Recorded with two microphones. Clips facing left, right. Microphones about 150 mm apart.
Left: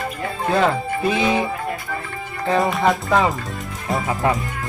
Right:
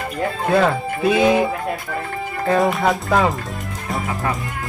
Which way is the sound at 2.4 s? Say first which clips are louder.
Right 1 dB; centre (ahead or behind).